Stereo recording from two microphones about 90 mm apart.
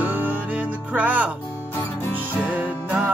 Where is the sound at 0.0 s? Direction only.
20° right (ahead or behind).